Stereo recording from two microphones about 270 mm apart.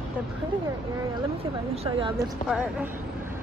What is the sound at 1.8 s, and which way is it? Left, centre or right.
Speech, centre.